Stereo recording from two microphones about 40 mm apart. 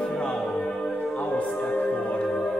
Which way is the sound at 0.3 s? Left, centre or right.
Centre.